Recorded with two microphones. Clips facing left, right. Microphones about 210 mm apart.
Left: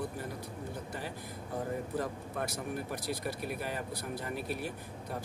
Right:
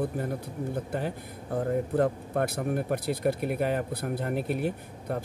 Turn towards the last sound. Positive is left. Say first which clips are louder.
# right 9 dB
turn(degrees=-60)  # may be behind; listen again after turning